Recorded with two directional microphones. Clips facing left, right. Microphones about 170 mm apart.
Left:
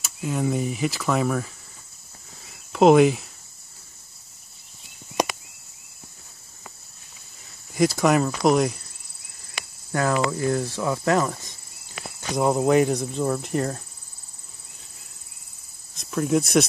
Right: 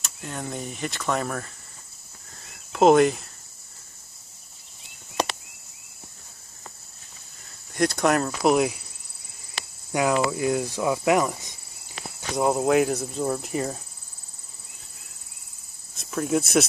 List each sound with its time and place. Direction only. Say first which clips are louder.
0.0 s speech: left 9 dB; 5° left (ahead or behind)
2.4 s a sound: left 1 dB; centre (ahead or behind)
5.2 s a sound: left 3 dB; 15° left (ahead or behind)
7.7 s speech: left 2 dB; centre (ahead or behind)
9.6 s cricket: even; 35° right (ahead or behind)
10.1 s speech: even; 10° right (ahead or behind)
12.4 s speech: left 2 dB; centre (ahead or behind)
16.0 s speech: left 2 dB; centre (ahead or behind)